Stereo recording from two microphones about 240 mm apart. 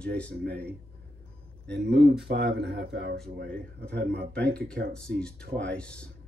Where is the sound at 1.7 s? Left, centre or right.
Right.